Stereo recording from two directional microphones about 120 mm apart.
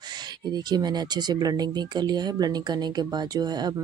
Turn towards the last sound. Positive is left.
turn(degrees=-35)  # may be behind; listen again after turning